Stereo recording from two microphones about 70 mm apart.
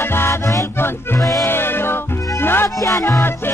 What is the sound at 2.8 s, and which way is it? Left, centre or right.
Music, left.